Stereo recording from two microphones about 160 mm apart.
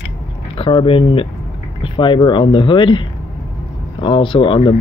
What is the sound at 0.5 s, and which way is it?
Speech, 35° left (ahead or behind).